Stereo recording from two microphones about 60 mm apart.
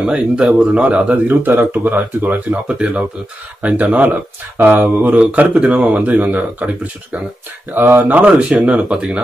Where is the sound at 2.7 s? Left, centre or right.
Centre; by 8.1 s right.